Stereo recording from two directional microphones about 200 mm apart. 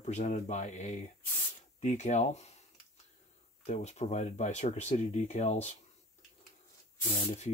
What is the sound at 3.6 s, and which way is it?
Speech, 35° left (ahead or behind).